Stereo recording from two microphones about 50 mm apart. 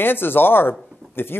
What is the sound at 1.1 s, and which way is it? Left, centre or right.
Speech, left.